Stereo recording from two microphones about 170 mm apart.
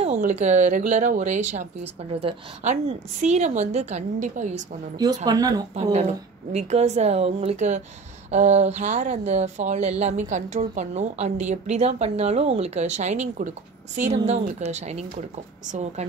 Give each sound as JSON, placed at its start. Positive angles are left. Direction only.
{"t": 0.0, "sound": "speech", "side_deg": -45}
{"t": 4.9, "sound": "speech", "side_deg": -25}
{"t": 5.8, "sound": "speech", "side_deg": -40}